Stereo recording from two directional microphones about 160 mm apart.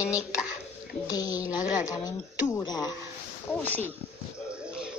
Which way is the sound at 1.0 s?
25° left (ahead or behind).